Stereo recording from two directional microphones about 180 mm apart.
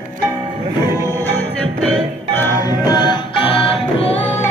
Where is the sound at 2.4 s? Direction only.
20° left (ahead or behind).